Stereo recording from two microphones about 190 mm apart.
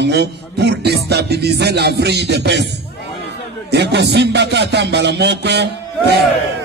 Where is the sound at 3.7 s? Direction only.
60° right (ahead or behind).